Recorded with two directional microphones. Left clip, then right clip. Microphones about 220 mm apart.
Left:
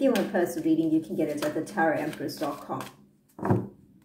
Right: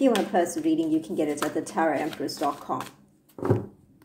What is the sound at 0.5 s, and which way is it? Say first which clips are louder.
A woman's voice: even; 35° right (ahead or behind).